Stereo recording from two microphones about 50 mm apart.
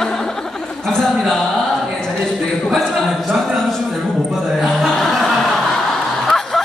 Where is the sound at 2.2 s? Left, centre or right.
Centre.